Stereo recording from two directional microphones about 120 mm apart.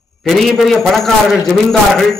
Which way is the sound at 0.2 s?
Centre (ahead or behind).